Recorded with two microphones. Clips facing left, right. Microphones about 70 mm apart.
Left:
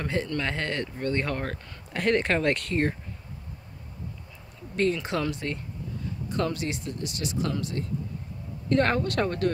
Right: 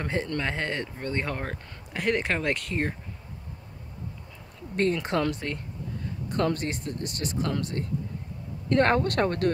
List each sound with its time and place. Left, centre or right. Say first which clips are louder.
0.0 s speech: even; right
2.0 s speech: left 3 dB; centre
4.7 s speech: right 1 dB; right